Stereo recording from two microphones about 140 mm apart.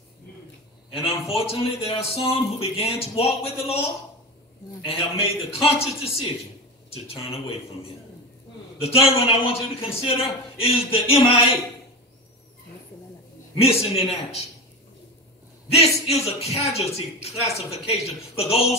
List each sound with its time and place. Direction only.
1.3 s speech: 45° left (ahead or behind)
8.7 s speech: 45° left (ahead or behind)
13.6 s speech: 45° left (ahead or behind)
15.7 s speech: 45° left (ahead or behind)